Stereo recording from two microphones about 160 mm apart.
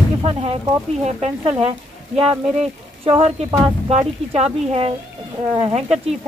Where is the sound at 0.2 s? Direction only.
35° right (ahead or behind).